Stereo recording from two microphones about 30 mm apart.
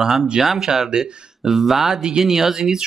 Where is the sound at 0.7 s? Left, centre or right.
Right.